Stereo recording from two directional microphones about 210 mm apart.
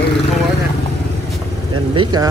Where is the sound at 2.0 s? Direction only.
20° right (ahead or behind).